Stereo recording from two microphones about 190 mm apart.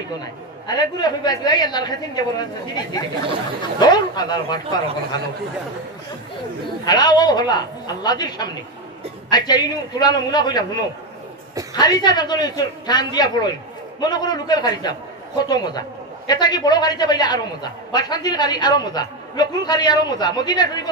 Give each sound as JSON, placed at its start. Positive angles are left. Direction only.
{"t": 0.7, "sound": "a man's voice", "side_deg": 20}
{"t": 6.8, "sound": "a man's voice", "side_deg": 20}